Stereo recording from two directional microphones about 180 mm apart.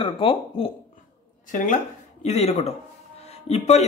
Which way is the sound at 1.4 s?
45° left (ahead or behind).